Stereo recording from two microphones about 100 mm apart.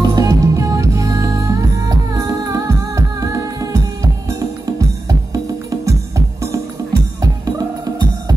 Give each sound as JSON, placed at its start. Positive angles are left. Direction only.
{"t": 0.0, "sound": "music", "side_deg": -40}